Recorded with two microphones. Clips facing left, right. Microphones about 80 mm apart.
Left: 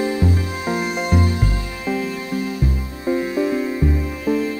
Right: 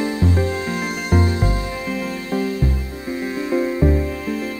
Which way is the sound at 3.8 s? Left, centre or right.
Right.